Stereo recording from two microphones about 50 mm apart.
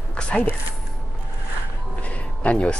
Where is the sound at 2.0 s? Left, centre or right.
Left.